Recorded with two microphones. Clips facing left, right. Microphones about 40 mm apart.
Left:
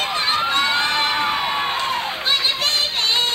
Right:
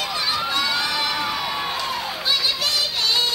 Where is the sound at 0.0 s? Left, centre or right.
Left.